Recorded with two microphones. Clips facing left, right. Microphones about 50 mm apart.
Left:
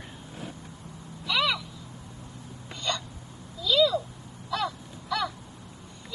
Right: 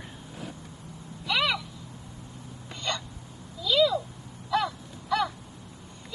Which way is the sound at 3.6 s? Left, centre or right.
Centre.